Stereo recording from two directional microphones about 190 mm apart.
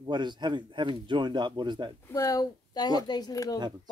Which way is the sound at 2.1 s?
15° left (ahead or behind).